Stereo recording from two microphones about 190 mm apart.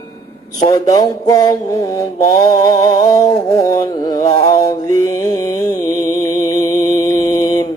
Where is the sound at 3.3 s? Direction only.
15° left (ahead or behind).